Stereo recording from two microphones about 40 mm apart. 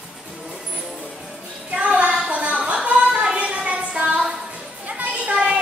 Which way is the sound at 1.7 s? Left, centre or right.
Right.